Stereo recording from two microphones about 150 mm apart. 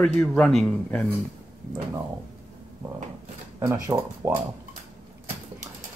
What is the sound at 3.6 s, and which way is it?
Speech, 20° right (ahead or behind).